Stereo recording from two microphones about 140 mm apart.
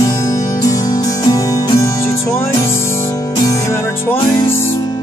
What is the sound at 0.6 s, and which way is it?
Music, 25° left (ahead or behind).